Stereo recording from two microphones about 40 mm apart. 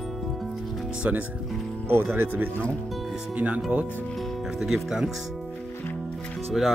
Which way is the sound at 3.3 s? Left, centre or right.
Right.